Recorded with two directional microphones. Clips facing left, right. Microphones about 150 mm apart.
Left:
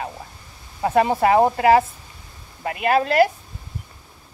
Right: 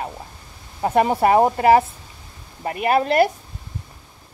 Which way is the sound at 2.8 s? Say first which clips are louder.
Even; 20° right (ahead or behind).